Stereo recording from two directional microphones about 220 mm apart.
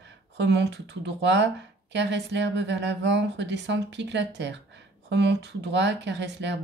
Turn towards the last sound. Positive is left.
turn(degrees=-50)  # may be behind; listen again after turning